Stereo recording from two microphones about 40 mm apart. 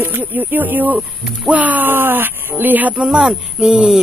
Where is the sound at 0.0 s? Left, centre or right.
Right.